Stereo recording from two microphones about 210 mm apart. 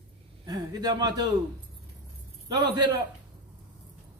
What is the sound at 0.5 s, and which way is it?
Speech, 20° right (ahead or behind).